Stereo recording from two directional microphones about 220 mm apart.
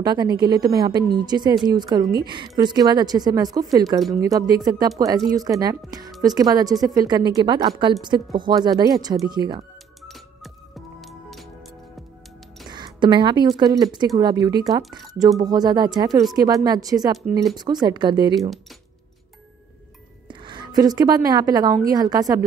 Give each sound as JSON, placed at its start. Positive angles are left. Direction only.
{"t": 0.0, "sound": "a woman's voice", "side_deg": -20}
{"t": 10.0, "sound": "music", "side_deg": 0}
{"t": 12.6, "sound": "a woman's voice", "side_deg": -20}
{"t": 20.2, "sound": "speech", "side_deg": -20}